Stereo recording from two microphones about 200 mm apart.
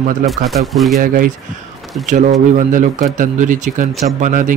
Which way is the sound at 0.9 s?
45° right (ahead or behind).